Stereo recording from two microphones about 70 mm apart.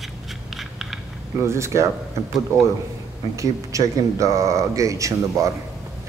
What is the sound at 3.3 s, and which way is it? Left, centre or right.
Speech, right.